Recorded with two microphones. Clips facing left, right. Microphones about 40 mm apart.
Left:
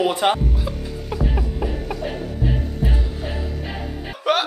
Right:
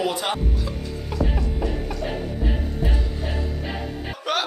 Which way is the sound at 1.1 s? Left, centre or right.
Centre.